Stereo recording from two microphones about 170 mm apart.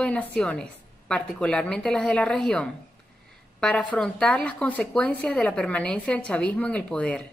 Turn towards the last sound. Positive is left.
turn(degrees=5)  # may be behind; listen again after turning